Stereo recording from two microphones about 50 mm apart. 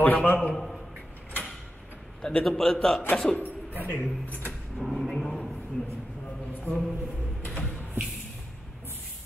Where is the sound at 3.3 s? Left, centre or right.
Left.